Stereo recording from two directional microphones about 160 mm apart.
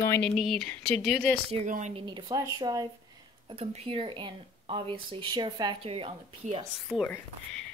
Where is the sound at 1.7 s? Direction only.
50° right (ahead or behind).